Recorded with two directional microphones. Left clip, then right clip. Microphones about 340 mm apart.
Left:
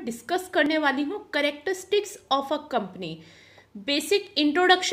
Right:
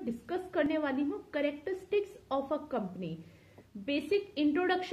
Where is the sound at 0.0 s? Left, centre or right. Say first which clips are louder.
Left 8 dB; left.